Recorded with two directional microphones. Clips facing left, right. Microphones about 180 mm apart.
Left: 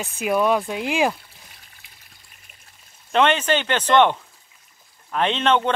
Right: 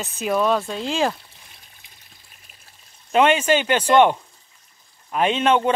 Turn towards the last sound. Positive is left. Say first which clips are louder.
# right 2 dB
turn(degrees=-10)  # may be behind; listen again after turning